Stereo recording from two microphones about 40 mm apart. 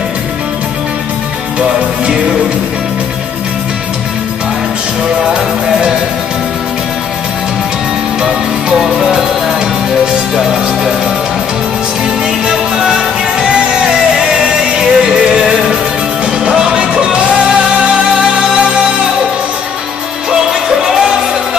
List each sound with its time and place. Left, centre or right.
5.2 s music: centre
8.2 s music: centre
10.3 s music: centre
14.3 s music: centre
20.2 s music: centre